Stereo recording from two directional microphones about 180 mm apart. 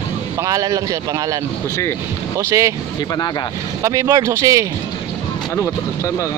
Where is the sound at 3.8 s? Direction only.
20° right (ahead or behind).